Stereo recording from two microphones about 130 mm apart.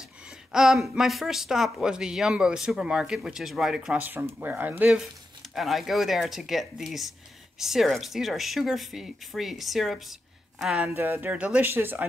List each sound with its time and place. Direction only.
0.5 s speech: 5° right (ahead or behind)
10.9 s speech: 20° right (ahead or behind)